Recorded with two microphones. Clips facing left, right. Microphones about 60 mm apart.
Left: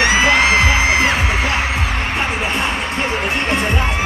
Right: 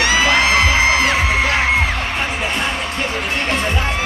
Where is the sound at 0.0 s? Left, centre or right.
Left.